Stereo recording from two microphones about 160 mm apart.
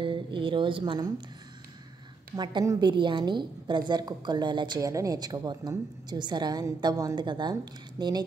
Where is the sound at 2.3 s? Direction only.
25° right (ahead or behind).